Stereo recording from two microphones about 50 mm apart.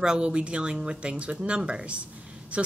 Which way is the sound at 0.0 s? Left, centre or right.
Centre.